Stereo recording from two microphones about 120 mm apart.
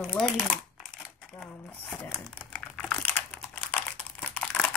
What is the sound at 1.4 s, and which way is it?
Crumpling, 10° left (ahead or behind).